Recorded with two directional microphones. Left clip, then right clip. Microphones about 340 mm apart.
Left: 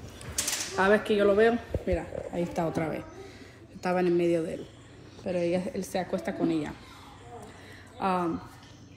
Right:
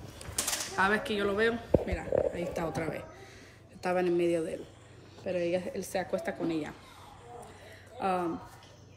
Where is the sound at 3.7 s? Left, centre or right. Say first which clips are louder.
Left 2 dB; left.